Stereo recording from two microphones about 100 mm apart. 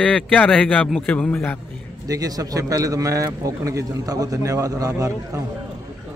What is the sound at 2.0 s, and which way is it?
A man's voice, 35° right (ahead or behind).